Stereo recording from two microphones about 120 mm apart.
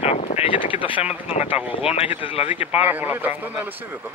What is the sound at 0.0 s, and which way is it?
Wind noise, 60° left (ahead or behind).